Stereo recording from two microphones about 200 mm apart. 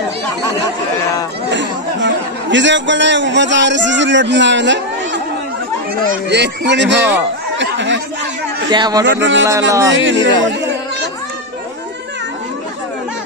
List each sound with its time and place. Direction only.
1.5 s a man's voice: 65° right (ahead or behind)
6.2 s speech: 60° right (ahead or behind)
8.6 s a man's voice: 20° right (ahead or behind)
9.0 s speech: 65° right (ahead or behind)
9.7 s speech: 15° right (ahead or behind)
9.9 s speech: 70° right (ahead or behind)